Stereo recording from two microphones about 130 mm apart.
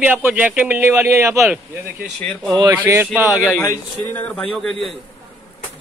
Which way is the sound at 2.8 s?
15° right (ahead or behind).